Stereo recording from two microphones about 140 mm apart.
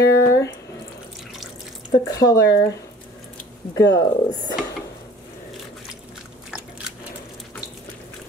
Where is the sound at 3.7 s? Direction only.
30° left (ahead or behind).